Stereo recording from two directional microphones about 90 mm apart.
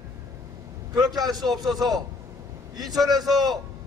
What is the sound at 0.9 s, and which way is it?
A man's voice, 45° right (ahead or behind).